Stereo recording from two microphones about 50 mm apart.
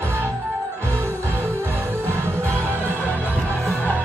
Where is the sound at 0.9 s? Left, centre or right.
Right.